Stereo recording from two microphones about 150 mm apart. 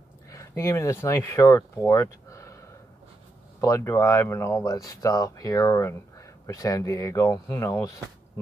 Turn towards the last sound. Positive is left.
turn(degrees=20)  # may be behind; listen again after turning